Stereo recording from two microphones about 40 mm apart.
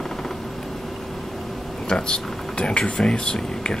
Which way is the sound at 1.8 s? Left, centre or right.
Left.